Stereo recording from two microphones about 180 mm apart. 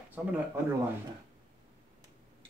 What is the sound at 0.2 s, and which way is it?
Speech, 5° right (ahead or behind).